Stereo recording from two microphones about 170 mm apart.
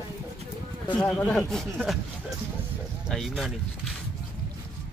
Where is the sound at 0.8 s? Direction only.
10° left (ahead or behind).